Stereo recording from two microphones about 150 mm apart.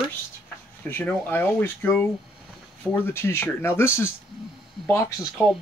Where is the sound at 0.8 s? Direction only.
10° left (ahead or behind).